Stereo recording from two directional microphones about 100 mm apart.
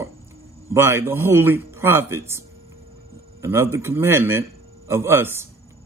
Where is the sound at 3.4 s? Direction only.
25° right (ahead or behind).